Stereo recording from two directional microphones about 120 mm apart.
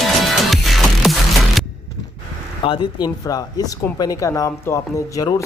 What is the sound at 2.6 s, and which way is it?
Speech, 35° left (ahead or behind).